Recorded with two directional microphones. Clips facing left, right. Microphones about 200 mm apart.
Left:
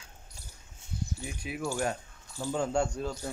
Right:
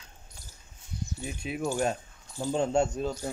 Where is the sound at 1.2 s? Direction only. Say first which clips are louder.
Right 5 dB; 25° right (ahead or behind).